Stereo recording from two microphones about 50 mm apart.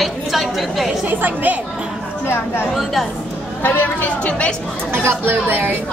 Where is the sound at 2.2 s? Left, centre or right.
Left.